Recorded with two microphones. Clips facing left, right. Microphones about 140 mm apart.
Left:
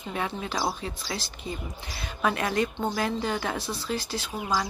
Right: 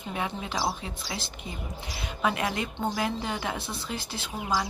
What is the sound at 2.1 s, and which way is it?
Speech, 15° right (ahead or behind).